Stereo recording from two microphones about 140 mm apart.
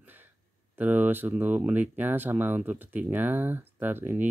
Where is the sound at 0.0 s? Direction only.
15° right (ahead or behind).